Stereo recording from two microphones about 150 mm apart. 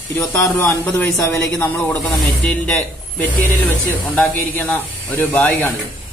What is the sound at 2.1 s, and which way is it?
Speech, centre (ahead or behind).